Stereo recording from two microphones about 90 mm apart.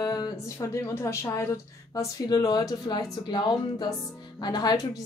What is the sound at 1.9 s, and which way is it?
A woman's voice, 45° left (ahead or behind).